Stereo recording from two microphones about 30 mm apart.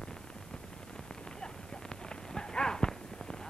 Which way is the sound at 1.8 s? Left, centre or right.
Left.